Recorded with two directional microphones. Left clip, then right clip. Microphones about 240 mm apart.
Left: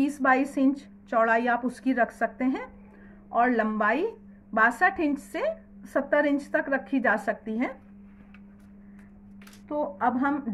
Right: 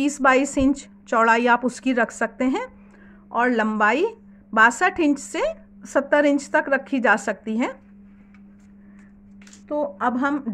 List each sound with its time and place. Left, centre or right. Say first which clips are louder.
0.0 s a woman's voice: right 5 dB; right
9.7 s a woman's voice: right 3 dB; right